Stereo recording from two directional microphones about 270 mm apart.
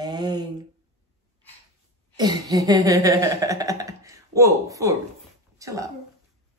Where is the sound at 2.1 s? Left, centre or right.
Centre.